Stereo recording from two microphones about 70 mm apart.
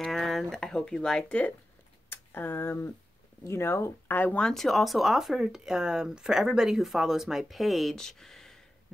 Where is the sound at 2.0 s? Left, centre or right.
Left.